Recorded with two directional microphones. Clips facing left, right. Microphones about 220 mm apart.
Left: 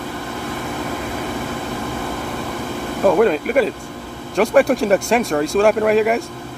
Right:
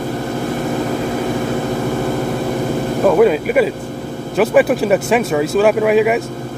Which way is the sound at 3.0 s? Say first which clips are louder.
Right 2 dB; 5° right (ahead or behind).